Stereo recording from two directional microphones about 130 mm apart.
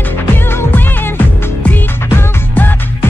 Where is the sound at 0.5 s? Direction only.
15° left (ahead or behind).